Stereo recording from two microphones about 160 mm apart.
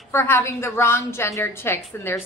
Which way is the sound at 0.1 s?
15° left (ahead or behind).